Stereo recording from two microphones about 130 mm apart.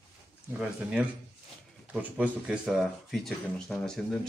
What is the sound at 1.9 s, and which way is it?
A man's voice, 10° right (ahead or behind).